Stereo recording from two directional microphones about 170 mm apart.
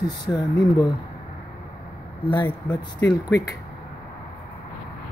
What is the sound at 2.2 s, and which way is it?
Speech, 25° left (ahead or behind).